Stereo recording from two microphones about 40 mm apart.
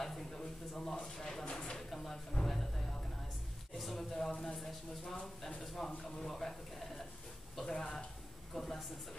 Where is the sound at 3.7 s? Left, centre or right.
Centre.